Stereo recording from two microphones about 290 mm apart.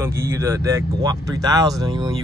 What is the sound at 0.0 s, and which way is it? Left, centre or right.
Speech, centre.